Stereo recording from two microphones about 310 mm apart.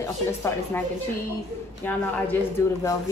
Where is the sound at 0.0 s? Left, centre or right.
Centre.